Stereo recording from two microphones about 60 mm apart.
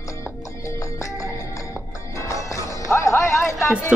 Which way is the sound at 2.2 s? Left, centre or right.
Left.